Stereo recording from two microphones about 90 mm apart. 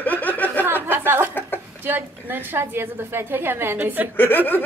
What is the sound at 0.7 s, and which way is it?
A woman's voice, 20° right (ahead or behind).